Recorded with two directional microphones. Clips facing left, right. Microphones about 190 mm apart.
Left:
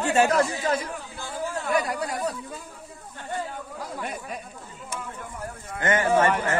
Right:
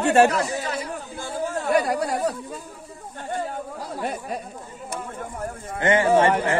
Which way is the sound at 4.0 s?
35° right (ahead or behind).